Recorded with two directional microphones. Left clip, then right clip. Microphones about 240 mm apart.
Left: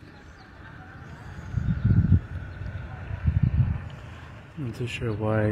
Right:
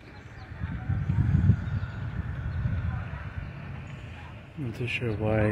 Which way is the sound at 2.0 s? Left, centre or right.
Left.